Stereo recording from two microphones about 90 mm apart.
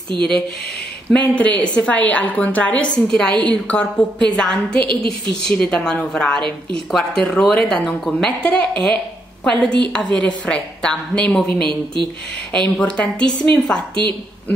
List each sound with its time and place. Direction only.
1.1 s a woman's voice: 15° left (ahead or behind)
4.8 s a woman's voice: 70° right (ahead or behind)
5.5 s a woman's voice: 10° left (ahead or behind)
11.6 s speech: 65° right (ahead or behind)
12.5 s a woman's voice: 10° left (ahead or behind)